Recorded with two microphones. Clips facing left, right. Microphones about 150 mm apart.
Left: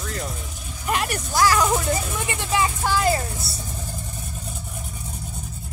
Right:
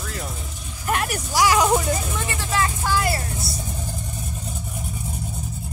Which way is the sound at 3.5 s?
60° left (ahead or behind).